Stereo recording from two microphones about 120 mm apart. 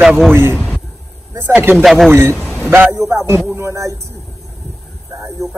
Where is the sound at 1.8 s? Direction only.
Centre (ahead or behind).